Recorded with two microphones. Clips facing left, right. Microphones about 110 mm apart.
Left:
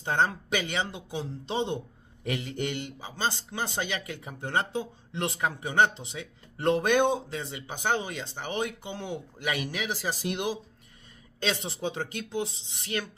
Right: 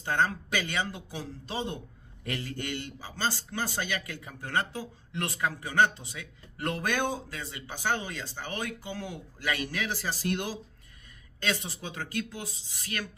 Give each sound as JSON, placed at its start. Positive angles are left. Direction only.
{"t": 0.0, "sound": "speech", "side_deg": 25}